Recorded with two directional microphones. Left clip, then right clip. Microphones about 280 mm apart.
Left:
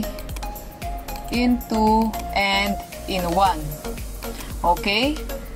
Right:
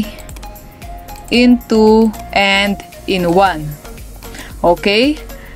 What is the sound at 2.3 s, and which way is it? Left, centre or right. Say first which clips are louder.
Speech: right 8 dB; right.